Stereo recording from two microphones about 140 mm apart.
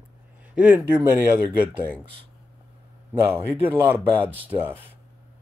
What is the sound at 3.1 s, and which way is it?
Speech, 15° right (ahead or behind).